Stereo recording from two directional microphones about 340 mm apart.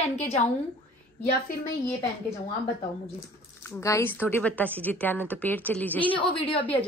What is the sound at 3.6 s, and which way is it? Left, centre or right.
Speech, centre.